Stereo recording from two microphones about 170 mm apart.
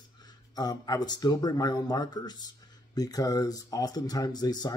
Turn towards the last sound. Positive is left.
turn(degrees=25)  # may be behind; listen again after turning